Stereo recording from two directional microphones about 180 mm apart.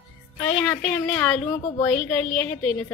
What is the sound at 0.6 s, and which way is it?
A woman's voice, 10° left (ahead or behind).